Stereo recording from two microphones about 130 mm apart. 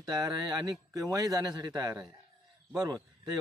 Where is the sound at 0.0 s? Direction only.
30° right (ahead or behind).